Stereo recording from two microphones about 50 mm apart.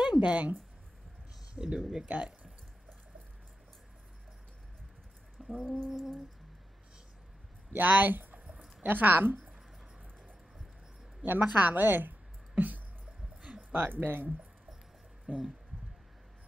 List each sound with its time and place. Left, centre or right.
0.2 s speech: right
1.6 s speech: centre
2.0 s speech: right
5.6 s music: centre
7.7 s speech: right
8.5 s a sound: right
11.4 s a woman's voice: right
15.3 s speech: centre